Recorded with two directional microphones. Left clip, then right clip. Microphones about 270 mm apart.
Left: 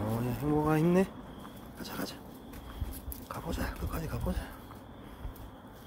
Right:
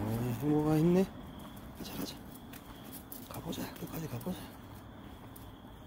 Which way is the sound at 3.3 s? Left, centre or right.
Centre.